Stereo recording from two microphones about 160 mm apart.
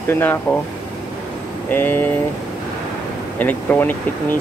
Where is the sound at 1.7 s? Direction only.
10° left (ahead or behind).